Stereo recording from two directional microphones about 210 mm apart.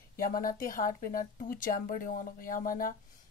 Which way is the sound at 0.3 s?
40° left (ahead or behind).